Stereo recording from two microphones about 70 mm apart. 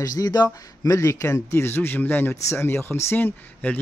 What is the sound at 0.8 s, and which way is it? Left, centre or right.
Speech, left.